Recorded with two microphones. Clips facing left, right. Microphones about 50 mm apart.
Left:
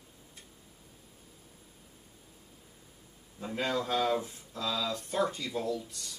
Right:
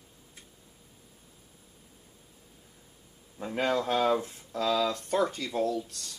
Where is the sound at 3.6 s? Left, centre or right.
Right.